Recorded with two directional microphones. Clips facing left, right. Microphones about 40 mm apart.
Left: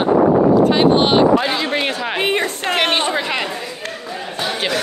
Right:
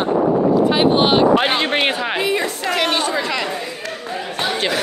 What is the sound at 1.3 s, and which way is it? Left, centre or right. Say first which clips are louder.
Speech: right 1 dB; right.